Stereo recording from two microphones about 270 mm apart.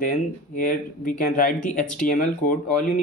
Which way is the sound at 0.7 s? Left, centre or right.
Left.